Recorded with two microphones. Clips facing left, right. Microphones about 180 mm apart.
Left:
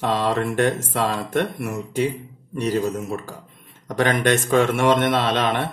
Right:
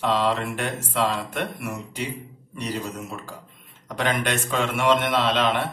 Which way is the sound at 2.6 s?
50° left (ahead or behind).